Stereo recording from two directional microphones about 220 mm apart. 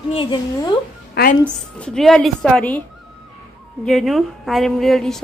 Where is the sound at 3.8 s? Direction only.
Centre (ahead or behind).